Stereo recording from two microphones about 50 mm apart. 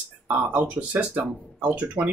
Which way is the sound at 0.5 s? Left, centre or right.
Right.